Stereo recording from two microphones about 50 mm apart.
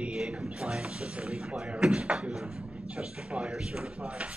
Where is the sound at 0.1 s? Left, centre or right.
Centre.